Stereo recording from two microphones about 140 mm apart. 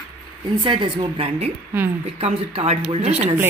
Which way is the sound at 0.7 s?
35° right (ahead or behind).